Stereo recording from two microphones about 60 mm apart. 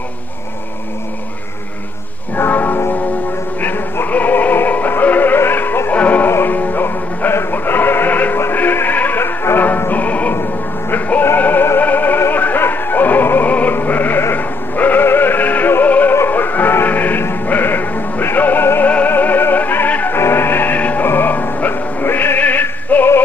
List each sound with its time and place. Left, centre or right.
2.3 s music: left
6.2 s music: left
9.2 s music: left
9.8 s music: left
20.2 s music: left